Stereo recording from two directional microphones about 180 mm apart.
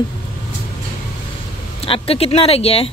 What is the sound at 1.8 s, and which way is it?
Speech, 30° left (ahead or behind).